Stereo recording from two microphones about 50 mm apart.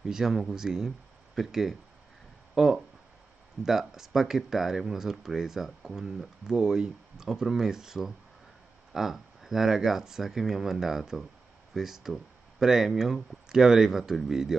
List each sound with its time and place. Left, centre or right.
0.0 s speech: centre